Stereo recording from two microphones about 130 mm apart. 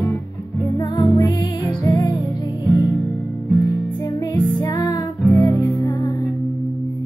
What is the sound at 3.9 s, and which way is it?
Music, 25° left (ahead or behind).